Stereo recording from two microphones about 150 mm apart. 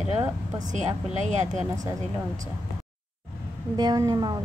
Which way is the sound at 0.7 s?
50° right (ahead or behind).